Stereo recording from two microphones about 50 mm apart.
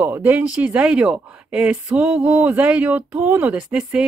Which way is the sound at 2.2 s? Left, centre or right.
Right.